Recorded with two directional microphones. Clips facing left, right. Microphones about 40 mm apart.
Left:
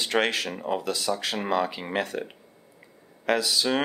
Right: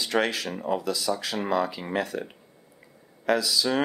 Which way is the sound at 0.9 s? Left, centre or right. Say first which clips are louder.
Even; left.